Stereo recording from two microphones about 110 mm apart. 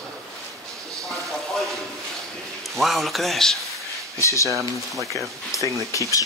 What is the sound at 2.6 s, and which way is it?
A man's voice, centre (ahead or behind).